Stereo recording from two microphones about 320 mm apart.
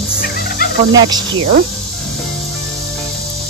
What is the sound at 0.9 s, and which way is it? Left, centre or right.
Cricket, centre.